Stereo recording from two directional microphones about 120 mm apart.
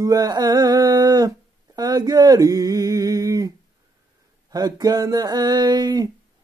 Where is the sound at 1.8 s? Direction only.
35° right (ahead or behind).